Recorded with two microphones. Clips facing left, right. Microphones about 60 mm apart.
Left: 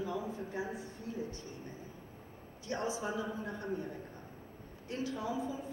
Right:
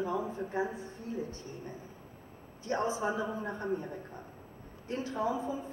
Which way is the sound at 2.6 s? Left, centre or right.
Right.